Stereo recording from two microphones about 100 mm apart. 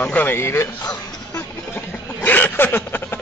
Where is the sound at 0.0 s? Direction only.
15° left (ahead or behind).